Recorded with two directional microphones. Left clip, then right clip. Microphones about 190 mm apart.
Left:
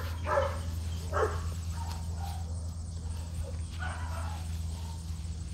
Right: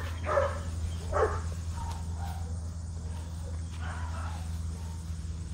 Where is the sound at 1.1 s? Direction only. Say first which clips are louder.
Right 2 dB; 50° left (ahead or behind).